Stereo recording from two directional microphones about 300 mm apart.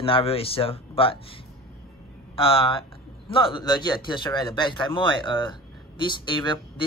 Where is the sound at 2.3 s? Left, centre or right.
Centre.